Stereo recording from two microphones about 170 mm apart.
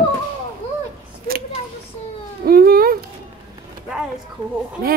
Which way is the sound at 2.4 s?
60° right (ahead or behind).